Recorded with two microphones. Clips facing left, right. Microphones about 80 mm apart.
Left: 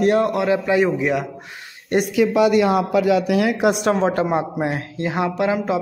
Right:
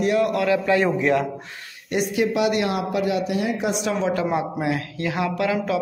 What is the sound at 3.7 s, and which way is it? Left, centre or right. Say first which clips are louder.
Speech: left 5 dB; left.